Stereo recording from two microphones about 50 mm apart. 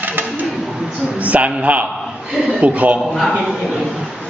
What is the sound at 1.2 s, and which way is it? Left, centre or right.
A man's voice, right.